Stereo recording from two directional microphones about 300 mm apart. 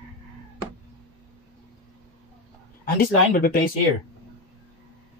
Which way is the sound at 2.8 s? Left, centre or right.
Left.